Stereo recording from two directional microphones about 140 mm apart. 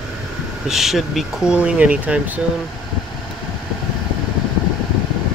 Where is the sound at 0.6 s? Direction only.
Centre (ahead or behind).